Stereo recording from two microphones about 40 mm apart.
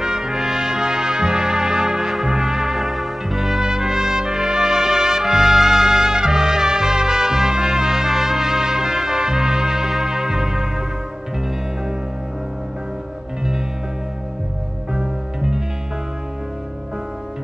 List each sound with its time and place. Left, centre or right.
0.0 s brass instrument: centre
2.2 s music: centre
3.6 s trumpet: centre
10.0 s music: centre
14.9 s music: centre